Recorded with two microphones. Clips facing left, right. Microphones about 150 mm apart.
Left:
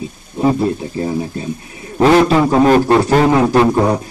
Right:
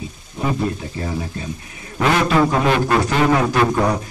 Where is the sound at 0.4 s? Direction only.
30° left (ahead or behind).